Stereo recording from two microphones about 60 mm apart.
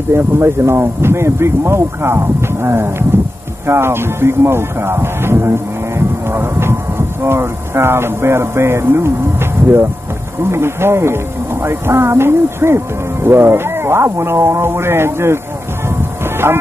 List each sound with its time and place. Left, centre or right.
0.1 s speech: right
16.4 s speech: right